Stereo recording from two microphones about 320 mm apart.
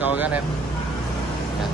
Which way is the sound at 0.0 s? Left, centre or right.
Centre.